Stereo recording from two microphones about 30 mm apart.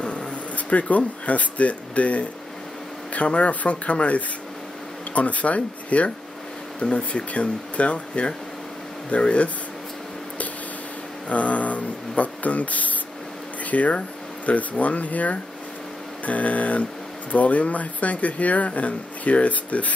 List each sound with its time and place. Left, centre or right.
0.0 s a sound: left
0.3 s speech: left
11.2 s speech: left